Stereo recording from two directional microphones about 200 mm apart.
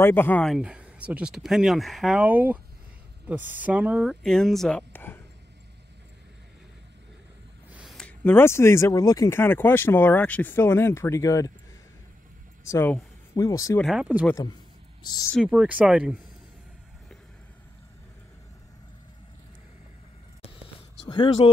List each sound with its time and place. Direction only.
0.0 s speech: 10° left (ahead or behind)
7.7 s a sound: centre (ahead or behind)
8.2 s speech: 10° left (ahead or behind)
12.6 s speech: 15° left (ahead or behind)
13.7 s speech: centre (ahead or behind)
15.3 s speech: 5° right (ahead or behind)
21.0 s speech: 25° left (ahead or behind)